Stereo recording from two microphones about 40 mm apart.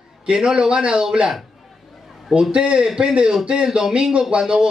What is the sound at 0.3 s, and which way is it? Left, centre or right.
Speech, centre.